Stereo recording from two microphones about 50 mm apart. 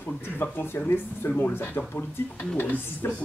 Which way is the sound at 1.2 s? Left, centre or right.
Left.